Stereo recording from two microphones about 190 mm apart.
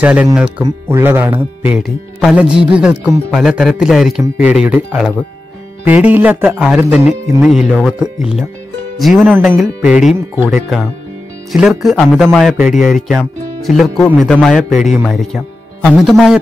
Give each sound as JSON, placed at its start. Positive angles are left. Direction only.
{"t": 0.0, "sound": "speech", "side_deg": -5}